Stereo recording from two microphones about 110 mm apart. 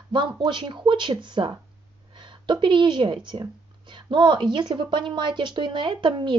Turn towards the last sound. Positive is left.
turn(degrees=-45)  # may be behind; listen again after turning